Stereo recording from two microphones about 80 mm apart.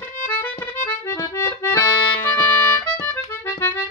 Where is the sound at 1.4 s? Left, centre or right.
Left.